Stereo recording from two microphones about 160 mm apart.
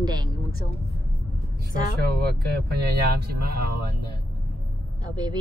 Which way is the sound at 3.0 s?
80° right.